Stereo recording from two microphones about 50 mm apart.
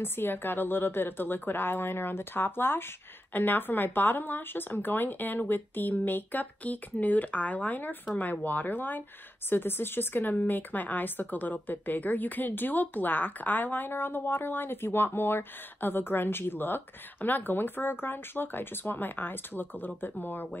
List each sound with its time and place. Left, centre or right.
0.0 s a woman's voice: left